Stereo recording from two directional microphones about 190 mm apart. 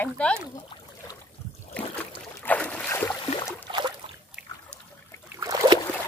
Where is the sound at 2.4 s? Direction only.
5° left (ahead or behind).